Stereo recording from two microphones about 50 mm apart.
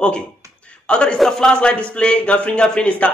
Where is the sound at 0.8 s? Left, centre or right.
Centre.